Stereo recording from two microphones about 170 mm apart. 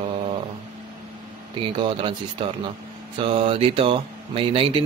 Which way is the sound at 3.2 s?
30° right (ahead or behind).